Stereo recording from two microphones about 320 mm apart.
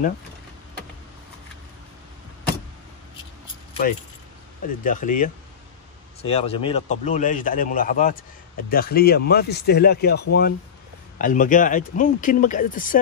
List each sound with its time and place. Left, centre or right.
4.8 s a man's voice: left